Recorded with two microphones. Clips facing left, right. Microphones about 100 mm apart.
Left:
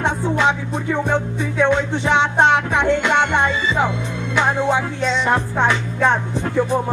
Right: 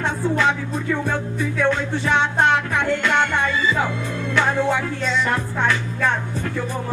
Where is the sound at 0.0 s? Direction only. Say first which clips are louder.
Left 2 dB; 20° left (ahead or behind).